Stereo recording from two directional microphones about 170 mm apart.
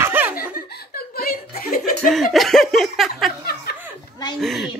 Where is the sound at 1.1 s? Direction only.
60° left (ahead or behind).